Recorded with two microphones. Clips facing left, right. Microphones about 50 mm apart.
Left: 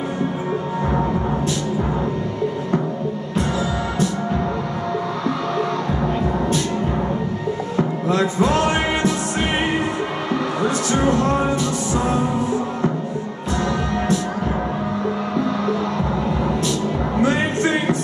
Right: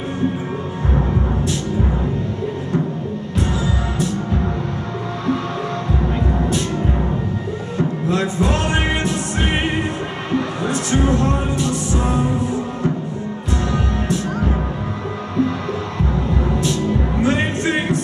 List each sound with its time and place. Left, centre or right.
8.1 s music: right
13.7 s music: right